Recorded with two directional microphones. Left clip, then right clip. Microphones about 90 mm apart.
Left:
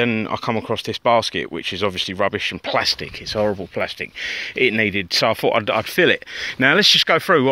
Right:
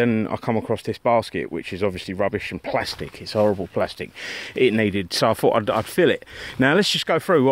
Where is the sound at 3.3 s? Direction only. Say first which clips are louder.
Right 1 dB; 55° right (ahead or behind).